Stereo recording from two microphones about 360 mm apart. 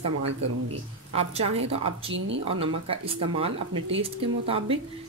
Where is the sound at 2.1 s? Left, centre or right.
Right.